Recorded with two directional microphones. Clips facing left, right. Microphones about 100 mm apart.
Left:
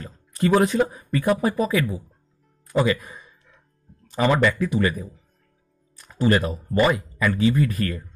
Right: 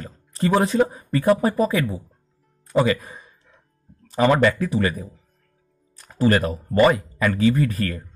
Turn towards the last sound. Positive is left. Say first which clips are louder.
# even
turn(degrees=-40)  # may be behind; listen again after turning